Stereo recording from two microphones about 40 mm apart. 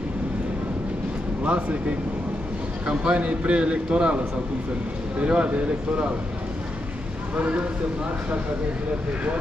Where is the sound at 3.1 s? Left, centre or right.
Right.